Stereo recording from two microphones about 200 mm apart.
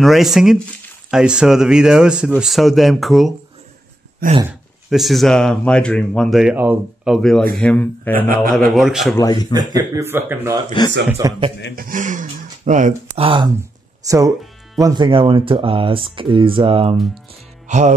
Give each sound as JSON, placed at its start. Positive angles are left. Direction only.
{"t": 0.0, "sound": "speech", "side_deg": 0}
{"t": 4.5, "sound": "speech", "side_deg": 0}
{"t": 7.2, "sound": "speech", "side_deg": 5}
{"t": 9.1, "sound": "speech", "side_deg": 20}
{"t": 9.5, "sound": "speech", "side_deg": -20}
{"t": 11.7, "sound": "speech", "side_deg": -45}
{"t": 13.2, "sound": "speech", "side_deg": -25}
{"t": 13.6, "sound": "a sound", "side_deg": -15}
{"t": 14.8, "sound": "speech", "side_deg": -20}
{"t": 16.9, "sound": "speech", "side_deg": 0}
{"t": 17.6, "sound": "music", "side_deg": -35}